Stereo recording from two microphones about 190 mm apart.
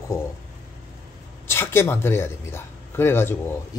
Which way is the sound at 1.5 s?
15° left (ahead or behind).